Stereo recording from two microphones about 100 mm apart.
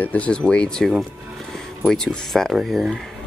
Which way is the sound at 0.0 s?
15° left (ahead or behind).